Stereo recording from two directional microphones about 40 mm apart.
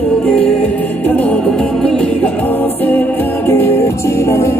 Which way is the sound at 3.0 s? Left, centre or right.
Left.